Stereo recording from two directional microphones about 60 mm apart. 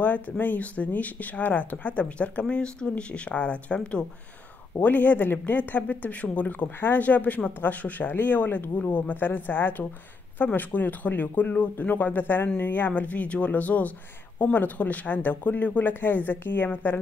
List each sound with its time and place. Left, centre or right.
0.0 s speech: left